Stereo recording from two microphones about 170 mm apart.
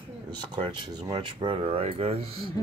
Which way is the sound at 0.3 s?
25° right (ahead or behind).